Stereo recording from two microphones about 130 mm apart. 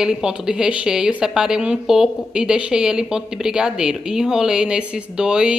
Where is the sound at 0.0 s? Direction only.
5° right (ahead or behind).